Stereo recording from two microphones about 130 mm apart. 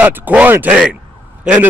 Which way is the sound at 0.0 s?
15° right (ahead or behind).